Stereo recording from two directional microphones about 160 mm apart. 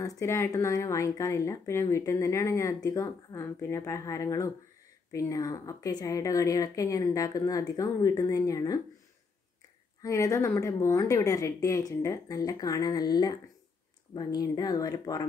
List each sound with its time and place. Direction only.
0.0 s a woman's voice: 20° left (ahead or behind)
10.0 s a woman's voice: 20° left (ahead or behind)